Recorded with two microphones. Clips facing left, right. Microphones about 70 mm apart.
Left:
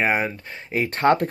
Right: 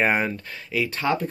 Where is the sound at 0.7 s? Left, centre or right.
Left.